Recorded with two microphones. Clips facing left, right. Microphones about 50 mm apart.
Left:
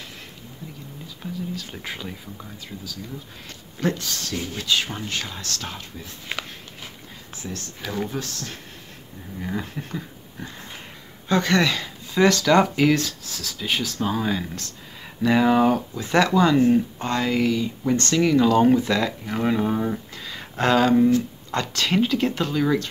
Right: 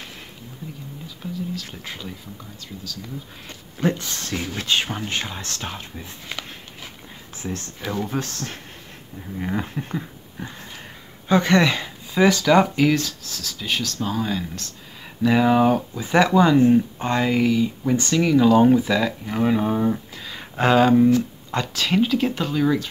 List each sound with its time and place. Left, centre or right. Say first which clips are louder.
1.0 s speech: right 1 dB; centre
3.4 s speech: right 2 dB; right
5.0 s speech: right 2 dB; right
6.2 s a sound: left 4 dB; centre
7.4 s speech: right 4 dB; right
9.8 s a sound: right 3 dB; centre
11.2 s speech: right 3 dB; centre
12.1 s speech: right 1 dB; centre